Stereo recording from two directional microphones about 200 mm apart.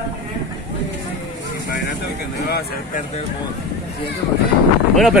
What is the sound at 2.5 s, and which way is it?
Speech, 50° left (ahead or behind).